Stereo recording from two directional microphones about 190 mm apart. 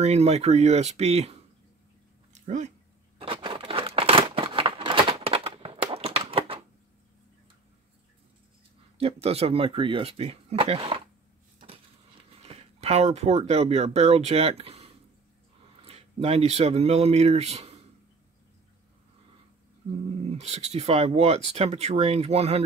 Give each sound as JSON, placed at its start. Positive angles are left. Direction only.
{"t": 0.0, "sound": "speech", "side_deg": -35}
{"t": 2.3, "sound": "dog", "side_deg": -40}
{"t": 3.2, "sound": "scissors", "side_deg": -25}
{"t": 8.9, "sound": "speech", "side_deg": -30}
{"t": 12.4, "sound": "speech", "side_deg": -35}
{"t": 20.2, "sound": "speech", "side_deg": -35}